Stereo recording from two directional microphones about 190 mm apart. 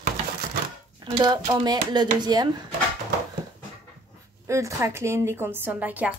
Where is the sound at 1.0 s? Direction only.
25° right (ahead or behind).